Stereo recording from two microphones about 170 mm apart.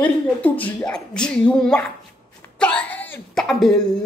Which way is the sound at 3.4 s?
Centre (ahead or behind).